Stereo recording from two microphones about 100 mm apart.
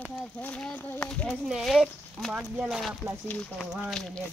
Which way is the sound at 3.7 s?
Centre (ahead or behind).